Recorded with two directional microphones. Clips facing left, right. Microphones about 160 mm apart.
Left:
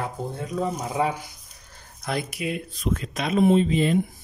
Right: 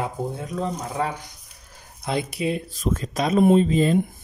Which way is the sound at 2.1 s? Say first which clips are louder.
Right 3 dB; 25° right (ahead or behind).